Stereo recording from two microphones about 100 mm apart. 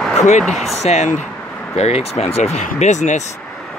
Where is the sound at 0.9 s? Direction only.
90° left.